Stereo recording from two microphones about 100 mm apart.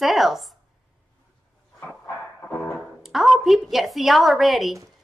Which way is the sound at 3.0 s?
5° right (ahead or behind).